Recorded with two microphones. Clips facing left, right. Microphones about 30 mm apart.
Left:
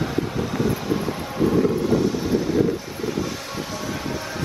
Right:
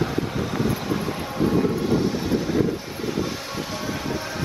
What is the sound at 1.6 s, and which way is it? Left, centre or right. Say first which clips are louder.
Vehicle: left 2 dB; centre.